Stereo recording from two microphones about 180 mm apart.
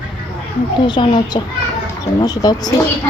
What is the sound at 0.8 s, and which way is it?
Speech, 25° left (ahead or behind).